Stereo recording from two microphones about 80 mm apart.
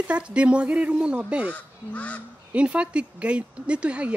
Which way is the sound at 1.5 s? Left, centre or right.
Centre.